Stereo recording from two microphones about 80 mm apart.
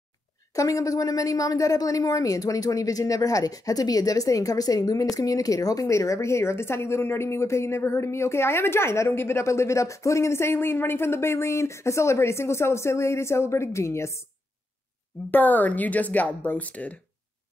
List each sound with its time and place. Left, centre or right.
0.5 s speech: left
15.3 s speech: left